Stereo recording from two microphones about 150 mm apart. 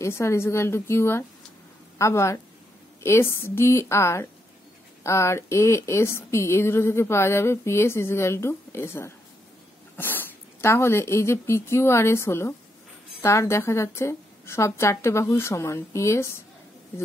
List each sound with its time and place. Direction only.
0.0 s a woman's voice: 20° left (ahead or behind)